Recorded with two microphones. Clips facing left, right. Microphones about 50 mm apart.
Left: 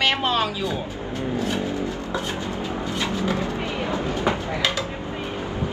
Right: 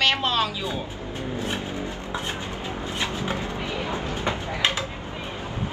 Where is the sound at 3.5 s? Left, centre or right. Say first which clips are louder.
Left 3 dB; left.